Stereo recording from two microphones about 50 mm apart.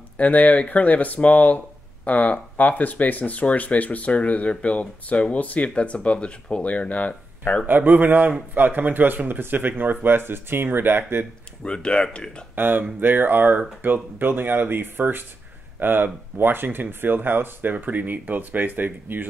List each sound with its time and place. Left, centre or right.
0.2 s speech: left
7.6 s speech: right
11.6 s speech: centre
12.5 s speech: right